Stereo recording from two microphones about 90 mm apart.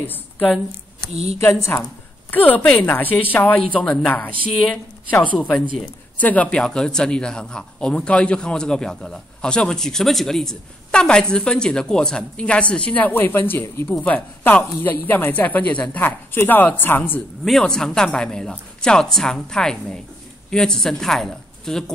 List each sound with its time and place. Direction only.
0.0 s a woman's voice: 20° left (ahead or behind)
1.4 s a woman's voice: 30° left (ahead or behind)
2.3 s a woman's voice: 20° left (ahead or behind)
3.8 s speech: 5° left (ahead or behind)
6.1 s speech: 15° left (ahead or behind)
17.5 s a woman's voice: 5° left (ahead or behind)